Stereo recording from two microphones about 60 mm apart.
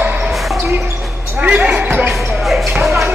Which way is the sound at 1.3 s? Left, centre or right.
Right.